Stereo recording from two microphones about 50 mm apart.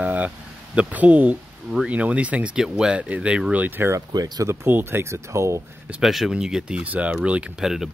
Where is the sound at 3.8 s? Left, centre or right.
Right.